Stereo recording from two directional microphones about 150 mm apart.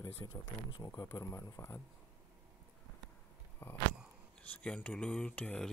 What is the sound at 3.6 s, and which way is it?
Biting, 15° left (ahead or behind).